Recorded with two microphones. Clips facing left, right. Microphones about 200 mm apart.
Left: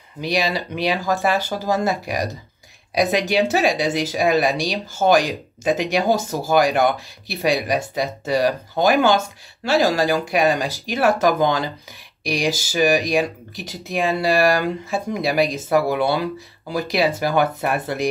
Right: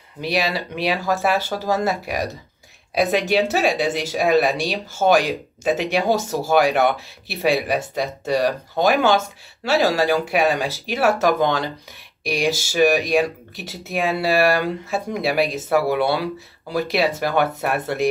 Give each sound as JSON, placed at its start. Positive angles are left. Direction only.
{"t": 0.2, "sound": "speech", "side_deg": -5}